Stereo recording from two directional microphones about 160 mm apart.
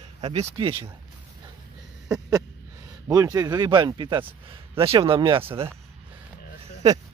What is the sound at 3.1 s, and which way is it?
A man's voice, 25° right (ahead or behind).